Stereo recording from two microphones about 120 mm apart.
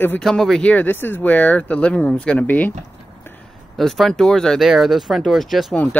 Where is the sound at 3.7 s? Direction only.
Centre (ahead or behind).